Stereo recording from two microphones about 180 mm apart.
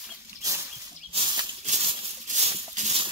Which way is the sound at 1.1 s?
30° right (ahead or behind).